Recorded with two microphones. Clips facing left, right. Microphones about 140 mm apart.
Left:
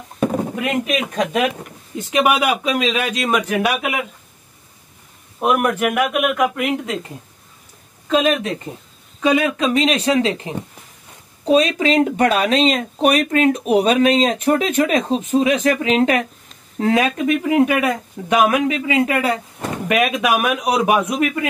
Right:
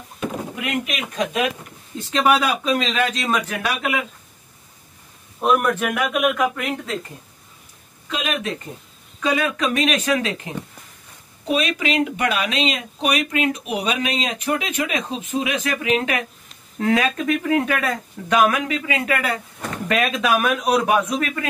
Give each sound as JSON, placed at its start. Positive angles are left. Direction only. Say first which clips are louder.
{"t": 2.0, "sound": "speech", "louder": "left 2 dB", "side_deg": 10}
{"t": 5.4, "sound": "speech", "louder": "left 2 dB", "side_deg": 10}
{"t": 8.1, "sound": "speech", "louder": "left 8 dB", "side_deg": 35}
{"t": 9.2, "sound": "speech", "louder": "left 4 dB", "side_deg": 20}
{"t": 11.4, "sound": "speech", "louder": "left 7 dB", "side_deg": 35}